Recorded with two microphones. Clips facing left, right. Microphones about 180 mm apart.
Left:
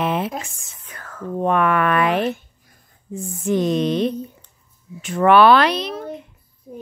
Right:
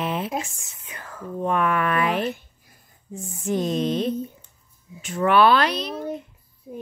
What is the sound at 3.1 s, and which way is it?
Speech, 80° left.